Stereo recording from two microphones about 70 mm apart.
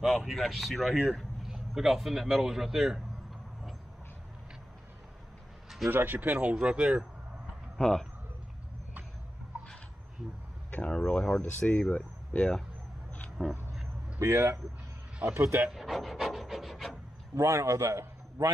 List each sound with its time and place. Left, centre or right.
0.0 s a man's voice: centre
5.9 s speech: right
7.7 s speech: centre
10.7 s a sound: centre
11.0 s speech: centre
13.4 s a sound: centre
14.2 s speech: right
15.6 s pant: centre
17.4 s a man's voice: right